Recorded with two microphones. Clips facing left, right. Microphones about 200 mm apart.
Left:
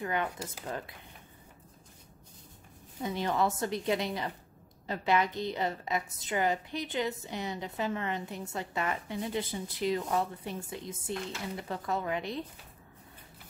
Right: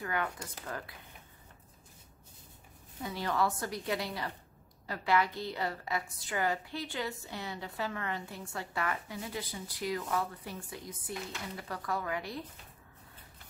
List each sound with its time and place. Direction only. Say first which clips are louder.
0.0 s a woman's voice: left 3 dB; 20° left (ahead or behind)
3.0 s a woman's voice: left 2 dB; 20° left (ahead or behind)